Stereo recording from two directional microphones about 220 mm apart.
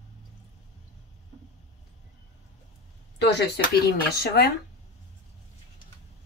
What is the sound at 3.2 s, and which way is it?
Speech, 50° left (ahead or behind).